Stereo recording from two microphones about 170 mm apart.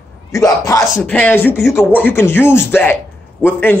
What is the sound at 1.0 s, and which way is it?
A man's voice, 10° left (ahead or behind).